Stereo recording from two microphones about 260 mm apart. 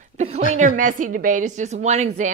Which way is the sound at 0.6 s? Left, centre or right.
Right.